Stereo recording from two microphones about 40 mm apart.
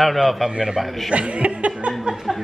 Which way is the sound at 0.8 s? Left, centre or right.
Centre.